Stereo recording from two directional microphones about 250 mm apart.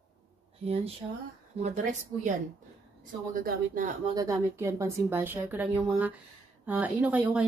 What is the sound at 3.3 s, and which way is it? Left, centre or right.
Speech, right.